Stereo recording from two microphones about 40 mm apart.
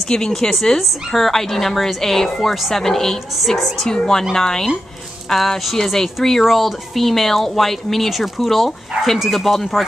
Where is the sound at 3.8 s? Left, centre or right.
Centre.